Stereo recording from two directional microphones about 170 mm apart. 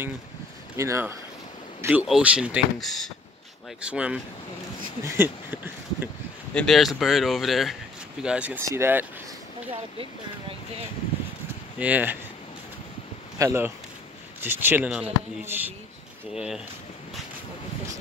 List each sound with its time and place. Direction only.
0.7 s speech: 15° right (ahead or behind)
5.0 s a sound: 15° right (ahead or behind)
6.5 s speech: centre (ahead or behind); by 9.0 s 15° right (ahead or behind)
11.8 s speech: 10° right (ahead or behind)
13.4 s speech: 15° right (ahead or behind)